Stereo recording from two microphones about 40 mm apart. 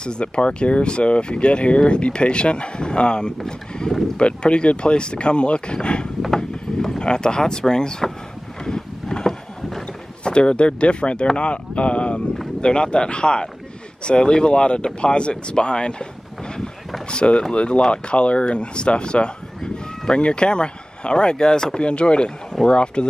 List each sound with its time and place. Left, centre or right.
0.0 s speech: left
6.2 s a sound: centre
7.0 s speech: left
8.6 s boat: centre
10.2 s speech: left
17.1 s speech: left